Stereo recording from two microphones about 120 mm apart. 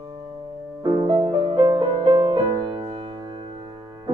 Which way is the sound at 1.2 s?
60° right (ahead or behind).